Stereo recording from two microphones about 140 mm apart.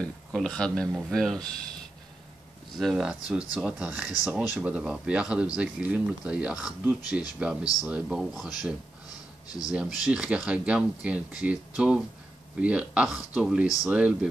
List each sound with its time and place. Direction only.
0.0 s speech: 5° left (ahead or behind)
2.8 s speech: centre (ahead or behind)
9.7 s speech: 5° right (ahead or behind)